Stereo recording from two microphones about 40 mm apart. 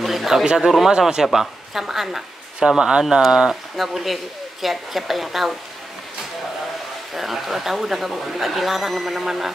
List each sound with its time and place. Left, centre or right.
0.0 s speech: centre
2.6 s speech: right
3.7 s speech: centre
7.2 s speech: centre